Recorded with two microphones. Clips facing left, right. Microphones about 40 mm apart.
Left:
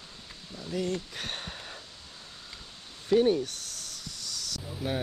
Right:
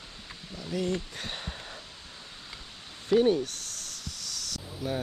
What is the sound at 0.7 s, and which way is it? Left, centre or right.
Speech, right.